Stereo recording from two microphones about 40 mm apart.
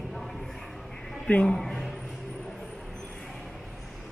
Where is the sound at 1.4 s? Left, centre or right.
Centre.